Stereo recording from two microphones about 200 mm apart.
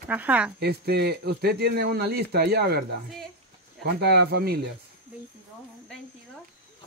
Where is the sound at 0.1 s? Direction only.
5° right (ahead or behind).